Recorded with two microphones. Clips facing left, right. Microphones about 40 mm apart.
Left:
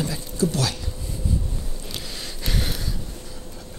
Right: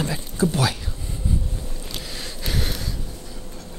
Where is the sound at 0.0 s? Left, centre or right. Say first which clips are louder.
Right 1 dB; right.